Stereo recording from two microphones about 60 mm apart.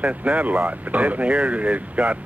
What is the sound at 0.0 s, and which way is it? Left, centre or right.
Speech, right.